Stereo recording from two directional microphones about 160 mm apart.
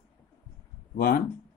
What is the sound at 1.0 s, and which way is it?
Speech, 75° left (ahead or behind).